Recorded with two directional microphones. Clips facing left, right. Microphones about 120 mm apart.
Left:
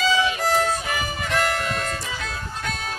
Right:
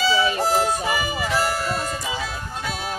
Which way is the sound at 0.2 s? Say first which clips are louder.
Right 1 dB; 40° right (ahead or behind).